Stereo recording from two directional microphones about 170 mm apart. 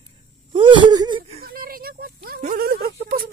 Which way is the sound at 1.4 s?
60° right (ahead or behind).